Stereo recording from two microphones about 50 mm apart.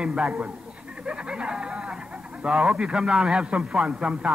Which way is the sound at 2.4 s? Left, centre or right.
Centre.